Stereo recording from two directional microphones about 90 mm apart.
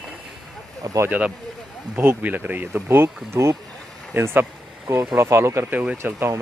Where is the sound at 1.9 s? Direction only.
25° right (ahead or behind).